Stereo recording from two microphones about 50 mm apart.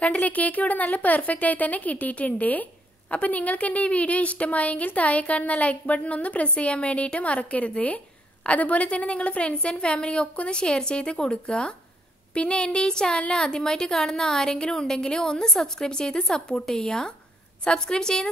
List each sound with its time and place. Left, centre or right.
0.0 s a woman's voice: left; by 18.3 s centre